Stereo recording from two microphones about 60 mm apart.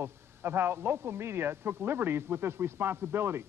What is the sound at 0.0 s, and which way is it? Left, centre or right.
A man's voice, right.